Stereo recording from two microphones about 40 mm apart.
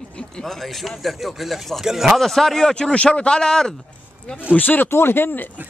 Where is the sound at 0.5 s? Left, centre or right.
Centre.